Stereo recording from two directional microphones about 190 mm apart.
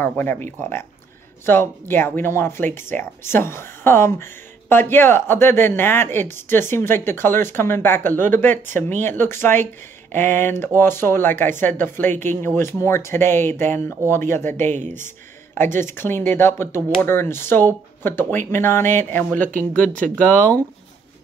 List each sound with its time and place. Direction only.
0.0 s speech: 10° left (ahead or behind)